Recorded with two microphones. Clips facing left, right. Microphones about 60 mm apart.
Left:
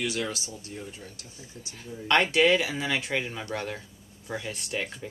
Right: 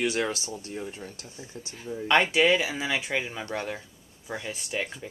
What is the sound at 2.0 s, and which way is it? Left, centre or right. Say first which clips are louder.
Speech: even; centre.